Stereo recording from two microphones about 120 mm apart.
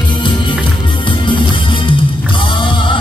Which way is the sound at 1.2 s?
40° left (ahead or behind).